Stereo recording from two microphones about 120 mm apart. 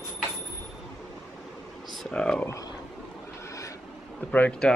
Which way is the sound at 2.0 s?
10° left (ahead or behind).